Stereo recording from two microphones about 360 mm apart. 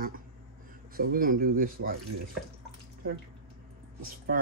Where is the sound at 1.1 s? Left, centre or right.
Right.